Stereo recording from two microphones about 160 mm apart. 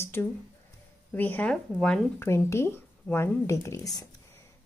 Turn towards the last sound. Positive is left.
turn(degrees=20)  # may be behind; listen again after turning